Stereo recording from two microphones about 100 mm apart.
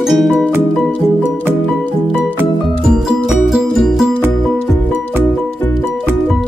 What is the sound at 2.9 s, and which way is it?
Music, 5° right (ahead or behind).